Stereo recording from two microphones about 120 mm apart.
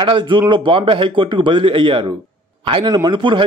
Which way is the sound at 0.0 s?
40° right (ahead or behind).